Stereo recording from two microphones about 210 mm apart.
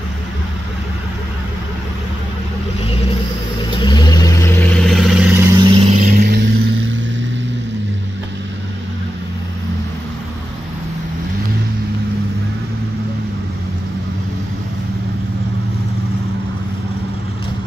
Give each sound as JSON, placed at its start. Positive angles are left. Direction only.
{"t": 3.7, "sound": "vehicle", "side_deg": 20}
{"t": 5.6, "sound": "vehicle", "side_deg": -25}
{"t": 6.1, "sound": "vehicle", "side_deg": -50}